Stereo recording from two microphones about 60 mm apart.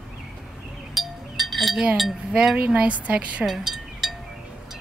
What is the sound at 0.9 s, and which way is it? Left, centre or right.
Chink, centre.